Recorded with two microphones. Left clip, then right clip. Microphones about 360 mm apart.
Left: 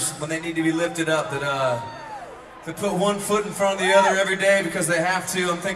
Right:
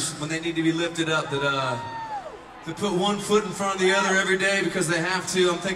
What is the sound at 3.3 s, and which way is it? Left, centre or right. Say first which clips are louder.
A man's voice: left 2 dB; centre.